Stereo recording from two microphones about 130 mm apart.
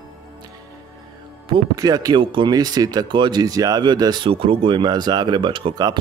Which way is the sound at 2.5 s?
30° right (ahead or behind).